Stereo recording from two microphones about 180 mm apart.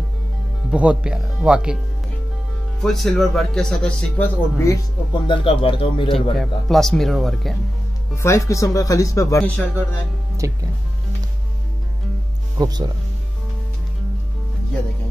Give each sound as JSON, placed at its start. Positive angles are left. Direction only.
{"t": 0.7, "sound": "speech", "side_deg": -5}
{"t": 2.8, "sound": "speech", "side_deg": 0}
{"t": 6.4, "sound": "speech", "side_deg": 0}
{"t": 8.2, "sound": "speech", "side_deg": 15}
{"t": 10.4, "sound": "speech", "side_deg": -20}
{"t": 12.5, "sound": "speech", "side_deg": -20}